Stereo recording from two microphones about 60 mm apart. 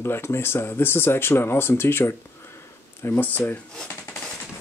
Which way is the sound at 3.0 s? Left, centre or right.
Left.